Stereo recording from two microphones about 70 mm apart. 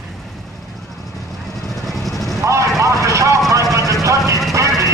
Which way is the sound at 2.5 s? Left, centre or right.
Right.